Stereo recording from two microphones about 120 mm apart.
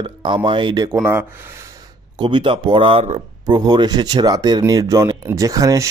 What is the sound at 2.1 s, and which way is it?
Speech, 40° right (ahead or behind).